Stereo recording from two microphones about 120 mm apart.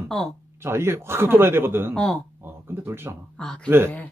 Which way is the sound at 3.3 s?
10° left (ahead or behind).